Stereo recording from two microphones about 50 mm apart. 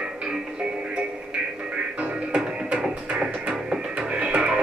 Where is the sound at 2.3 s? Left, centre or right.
Centre.